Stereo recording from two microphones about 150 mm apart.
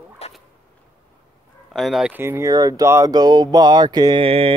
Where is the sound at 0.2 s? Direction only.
45° left (ahead or behind).